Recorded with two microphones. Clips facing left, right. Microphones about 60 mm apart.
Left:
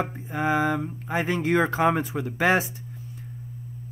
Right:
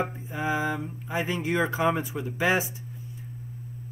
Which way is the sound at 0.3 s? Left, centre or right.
Left.